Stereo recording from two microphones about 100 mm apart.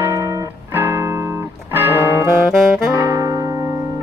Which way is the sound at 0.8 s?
25° right (ahead or behind).